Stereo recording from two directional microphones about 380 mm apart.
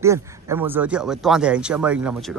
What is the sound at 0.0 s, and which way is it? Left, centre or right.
A man's voice, centre.